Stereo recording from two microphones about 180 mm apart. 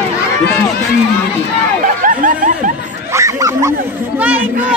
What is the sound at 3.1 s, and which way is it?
Bow-wow, 15° right (ahead or behind).